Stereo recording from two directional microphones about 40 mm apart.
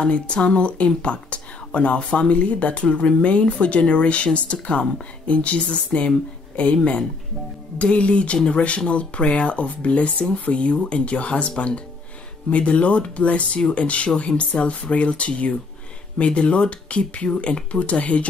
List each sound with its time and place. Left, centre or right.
0.0 s speech: left